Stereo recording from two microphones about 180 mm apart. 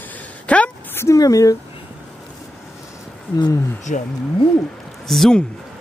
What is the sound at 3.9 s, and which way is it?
Speech, 40° left (ahead or behind).